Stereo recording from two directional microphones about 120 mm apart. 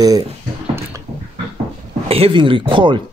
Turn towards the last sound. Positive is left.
turn(degrees=-45)  # may be behind; listen again after turning